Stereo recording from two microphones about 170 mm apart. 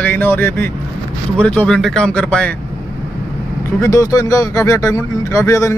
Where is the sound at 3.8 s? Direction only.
20° left (ahead or behind).